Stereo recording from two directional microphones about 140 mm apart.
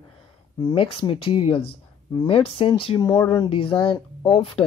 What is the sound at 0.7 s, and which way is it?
Speech, 40° left (ahead or behind).